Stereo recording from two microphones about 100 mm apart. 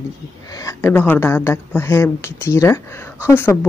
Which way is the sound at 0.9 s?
20° left (ahead or behind).